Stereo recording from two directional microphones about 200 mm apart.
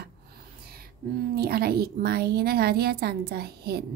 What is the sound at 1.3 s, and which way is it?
A woman's voice, 50° right (ahead or behind).